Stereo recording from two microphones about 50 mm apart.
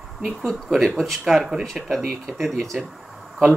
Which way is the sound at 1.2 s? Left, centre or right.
Centre.